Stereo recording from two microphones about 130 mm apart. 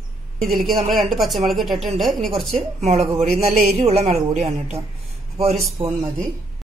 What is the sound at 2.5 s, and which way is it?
A woman's voice, 55° right (ahead or behind).